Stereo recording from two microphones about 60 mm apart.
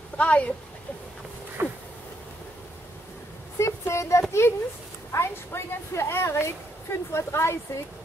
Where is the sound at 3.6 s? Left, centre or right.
Left.